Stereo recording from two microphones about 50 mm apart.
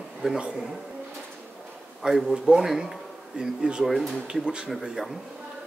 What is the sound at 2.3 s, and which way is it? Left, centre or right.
A man's voice, centre.